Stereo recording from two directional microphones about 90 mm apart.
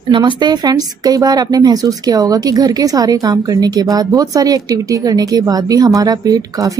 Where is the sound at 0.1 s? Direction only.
50° right (ahead or behind).